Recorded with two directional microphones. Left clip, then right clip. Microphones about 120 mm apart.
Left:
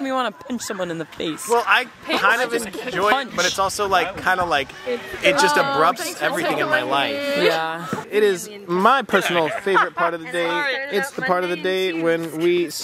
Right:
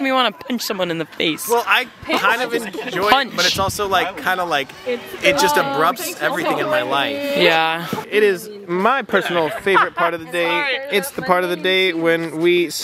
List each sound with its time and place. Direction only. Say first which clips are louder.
0.0 s speech: right 6 dB; 20° right (ahead or behind)
1.6 s speech: right 1 dB; 5° right (ahead or behind)
3.0 s speech: right 3 dB; 20° right (ahead or behind)
3.6 s speech: right 1 dB; centre (ahead or behind)
7.2 s speech: right 3 dB; 30° left (ahead or behind)
7.6 s speech: right 5 dB; 25° right (ahead or behind)
8.6 s speech: left 1 dB; 20° left (ahead or behind)
9.8 s speech: right 2 dB; 15° right (ahead or behind)
10.1 s speech: right 3 dB; centre (ahead or behind)
10.5 s speech: right 4 dB; 10° right (ahead or behind)